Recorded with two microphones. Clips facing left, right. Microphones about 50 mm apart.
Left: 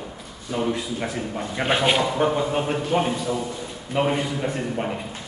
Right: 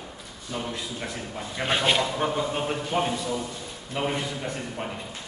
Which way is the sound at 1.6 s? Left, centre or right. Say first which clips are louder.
Left 3 dB; centre.